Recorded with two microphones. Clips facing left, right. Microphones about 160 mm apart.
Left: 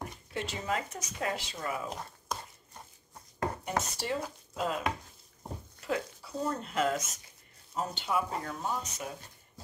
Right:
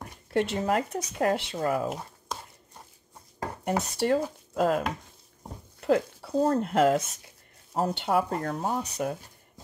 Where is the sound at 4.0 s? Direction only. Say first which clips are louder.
Right 9 dB; 55° right (ahead or behind).